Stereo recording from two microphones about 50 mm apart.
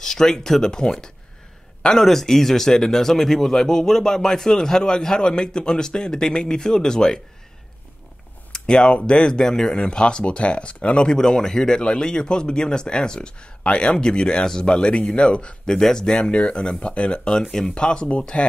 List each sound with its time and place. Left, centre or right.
0.0 s speech: centre
8.5 s speech: centre